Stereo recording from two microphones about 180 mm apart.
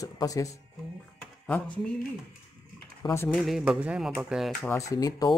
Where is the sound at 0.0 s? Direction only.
20° left (ahead or behind).